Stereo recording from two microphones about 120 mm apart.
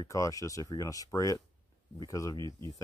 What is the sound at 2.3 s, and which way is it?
Speech, 40° right (ahead or behind).